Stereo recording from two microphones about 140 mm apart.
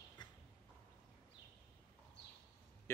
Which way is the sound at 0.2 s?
30° left (ahead or behind).